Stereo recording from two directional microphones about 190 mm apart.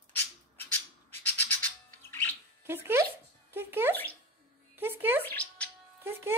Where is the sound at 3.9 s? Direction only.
10° left (ahead or behind).